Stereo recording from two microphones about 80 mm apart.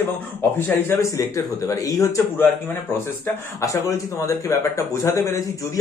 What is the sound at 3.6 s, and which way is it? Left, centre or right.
Speech, left.